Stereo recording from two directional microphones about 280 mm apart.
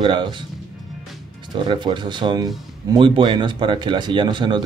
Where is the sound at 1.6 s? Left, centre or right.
Centre.